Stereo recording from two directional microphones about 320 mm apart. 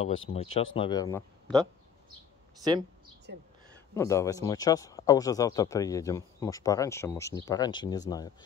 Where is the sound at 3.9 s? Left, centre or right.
Centre.